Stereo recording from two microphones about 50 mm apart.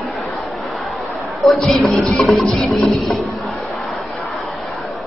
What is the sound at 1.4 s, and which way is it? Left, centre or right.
Speech, centre.